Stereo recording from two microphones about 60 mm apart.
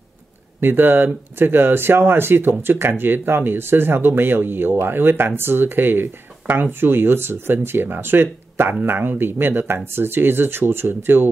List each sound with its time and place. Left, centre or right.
0.6 s speech: right